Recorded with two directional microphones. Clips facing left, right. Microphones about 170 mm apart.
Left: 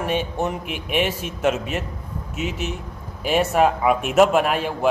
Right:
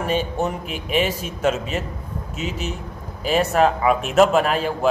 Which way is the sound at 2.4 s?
60° left (ahead or behind).